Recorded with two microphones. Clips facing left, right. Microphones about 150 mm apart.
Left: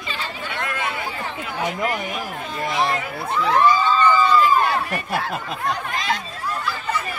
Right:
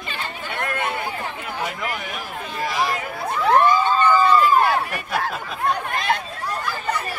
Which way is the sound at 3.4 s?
55° right (ahead or behind).